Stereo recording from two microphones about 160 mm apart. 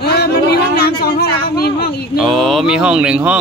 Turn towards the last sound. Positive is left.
turn(degrees=-5)  # may be behind; listen again after turning